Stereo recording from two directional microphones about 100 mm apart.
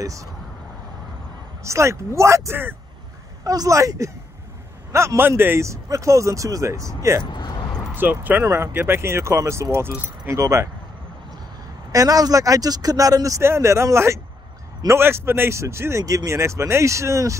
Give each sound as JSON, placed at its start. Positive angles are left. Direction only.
{"t": 1.6, "sound": "speech", "side_deg": -30}
{"t": 3.4, "sound": "speech", "side_deg": -35}
{"t": 7.2, "sound": "a sound", "side_deg": 50}
{"t": 7.9, "sound": "speech", "side_deg": -20}
{"t": 11.9, "sound": "speech", "side_deg": -35}